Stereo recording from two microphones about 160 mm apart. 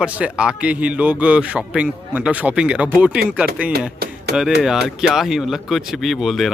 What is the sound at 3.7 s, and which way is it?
Music, 80° right.